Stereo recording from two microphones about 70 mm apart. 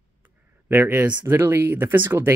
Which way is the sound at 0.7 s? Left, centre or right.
Right.